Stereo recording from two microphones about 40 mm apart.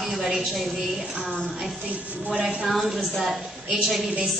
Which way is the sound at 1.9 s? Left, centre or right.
Right.